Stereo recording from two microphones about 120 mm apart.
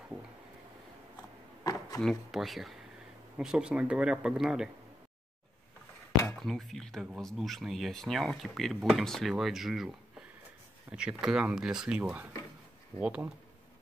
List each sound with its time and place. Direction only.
1.6 s a sound: 30° left (ahead or behind)
2.0 s speech: centre (ahead or behind)
6.2 s speech: 5° left (ahead or behind)